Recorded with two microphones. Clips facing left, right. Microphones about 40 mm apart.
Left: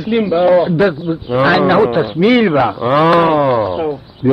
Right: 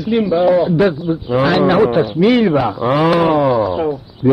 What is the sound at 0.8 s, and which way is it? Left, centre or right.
A man's voice, centre.